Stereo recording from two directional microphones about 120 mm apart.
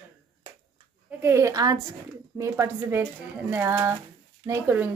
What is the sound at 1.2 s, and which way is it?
A woman's voice, 25° right (ahead or behind).